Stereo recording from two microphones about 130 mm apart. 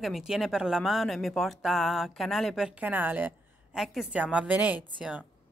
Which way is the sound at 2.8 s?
15° right (ahead or behind).